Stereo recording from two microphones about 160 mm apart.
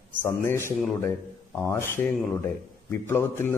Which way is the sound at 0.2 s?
15° left (ahead or behind).